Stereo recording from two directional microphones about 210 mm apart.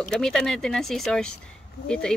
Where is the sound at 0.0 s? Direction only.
5° left (ahead or behind).